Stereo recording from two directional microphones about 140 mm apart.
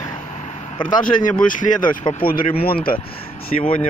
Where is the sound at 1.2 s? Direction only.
70° left (ahead or behind).